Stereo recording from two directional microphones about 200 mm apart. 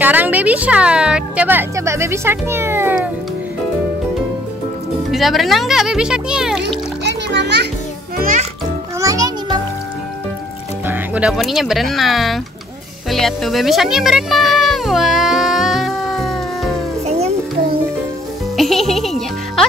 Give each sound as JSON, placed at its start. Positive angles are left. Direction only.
{"t": 0.0, "sound": "a woman's voice", "side_deg": -10}
{"t": 5.1, "sound": "a child's voice", "side_deg": 0}
{"t": 7.1, "sound": "music", "side_deg": -60}
{"t": 8.2, "sound": "music", "side_deg": -40}
{"t": 9.0, "sound": "music", "side_deg": -20}
{"t": 10.9, "sound": "speech", "side_deg": -5}
{"t": 13.1, "sound": "music", "side_deg": 0}
{"t": 17.0, "sound": "music", "side_deg": -30}
{"t": 18.6, "sound": "music", "side_deg": 0}